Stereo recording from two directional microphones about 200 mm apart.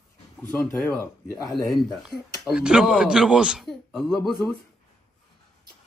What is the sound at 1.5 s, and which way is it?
Speech, centre (ahead or behind).